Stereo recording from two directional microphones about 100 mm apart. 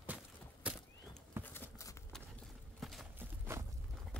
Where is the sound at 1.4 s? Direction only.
20° left (ahead or behind).